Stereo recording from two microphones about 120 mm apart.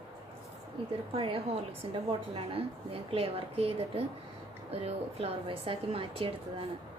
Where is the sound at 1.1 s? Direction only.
45° right (ahead or behind).